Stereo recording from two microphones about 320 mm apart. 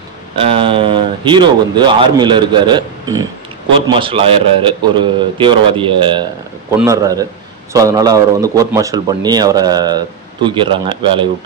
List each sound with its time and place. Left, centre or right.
0.4 s a man's voice: centre